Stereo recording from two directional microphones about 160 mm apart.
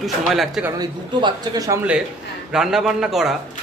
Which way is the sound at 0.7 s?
25° right (ahead or behind).